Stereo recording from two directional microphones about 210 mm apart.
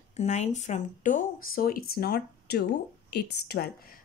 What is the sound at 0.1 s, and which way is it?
A woman's voice, 30° left (ahead or behind).